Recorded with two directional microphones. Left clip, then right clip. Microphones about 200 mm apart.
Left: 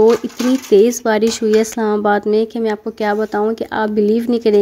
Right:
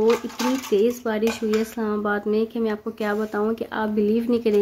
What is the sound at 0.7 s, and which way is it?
Speech, 45° left (ahead or behind).